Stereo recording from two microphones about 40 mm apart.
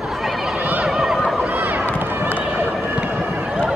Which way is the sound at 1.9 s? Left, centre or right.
Right.